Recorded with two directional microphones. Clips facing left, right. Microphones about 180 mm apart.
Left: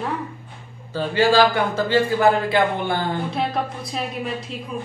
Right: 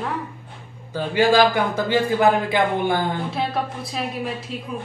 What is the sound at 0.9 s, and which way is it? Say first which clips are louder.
A man's voice: even; 15° right (ahead or behind).